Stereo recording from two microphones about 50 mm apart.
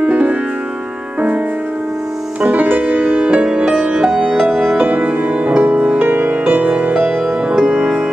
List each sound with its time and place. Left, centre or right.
0.0 s music: right
2.4 s music: right